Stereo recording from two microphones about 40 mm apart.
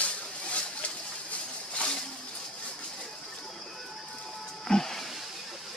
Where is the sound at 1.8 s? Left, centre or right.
Left.